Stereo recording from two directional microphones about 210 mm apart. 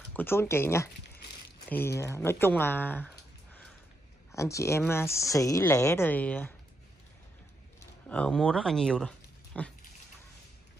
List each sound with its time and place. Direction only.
0.1 s speech: 10° left (ahead or behind)
4.3 s speech: 15° left (ahead or behind)
7.8 s speech: 5° left (ahead or behind)